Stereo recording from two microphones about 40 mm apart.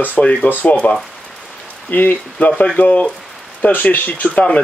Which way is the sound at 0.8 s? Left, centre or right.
Left.